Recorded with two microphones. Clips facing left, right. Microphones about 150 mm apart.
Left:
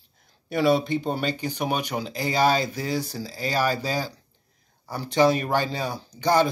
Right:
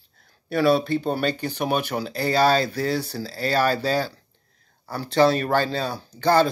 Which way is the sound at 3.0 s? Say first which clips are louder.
Right 1 dB; 60° right (ahead or behind).